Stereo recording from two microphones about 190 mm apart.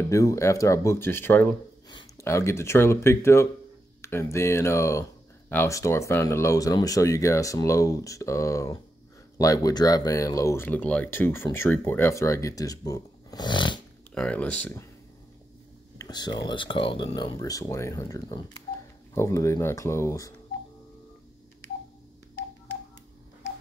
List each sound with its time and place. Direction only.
0.1 s speech: 15° left (ahead or behind)
1.9 s speech: 20° left (ahead or behind)
14.1 s speech: 5° left (ahead or behind)
16.0 s speech: 20° left (ahead or behind)